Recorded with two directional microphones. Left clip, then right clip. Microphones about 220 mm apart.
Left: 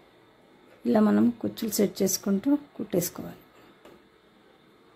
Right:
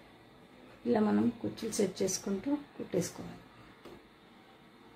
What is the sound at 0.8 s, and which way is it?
Speech, 50° left (ahead or behind).